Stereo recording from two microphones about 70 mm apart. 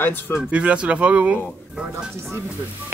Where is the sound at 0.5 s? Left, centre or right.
Centre.